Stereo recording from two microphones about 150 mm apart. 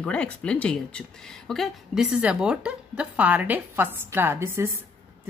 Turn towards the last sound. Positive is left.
turn(degrees=-20)  # may be behind; listen again after turning